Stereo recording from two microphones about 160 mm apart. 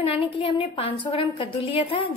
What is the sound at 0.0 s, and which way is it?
A woman's voice, 35° left (ahead or behind).